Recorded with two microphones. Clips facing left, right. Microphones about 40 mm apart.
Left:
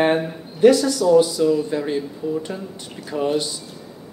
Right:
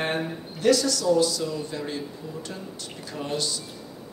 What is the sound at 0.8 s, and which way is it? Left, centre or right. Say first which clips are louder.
Speech: left 7 dB; centre.